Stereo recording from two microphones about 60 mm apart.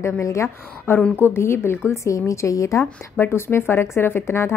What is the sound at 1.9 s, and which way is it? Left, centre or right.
Speech, left.